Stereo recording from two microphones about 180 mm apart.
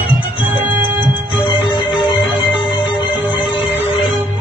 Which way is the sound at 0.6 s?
10° right (ahead or behind).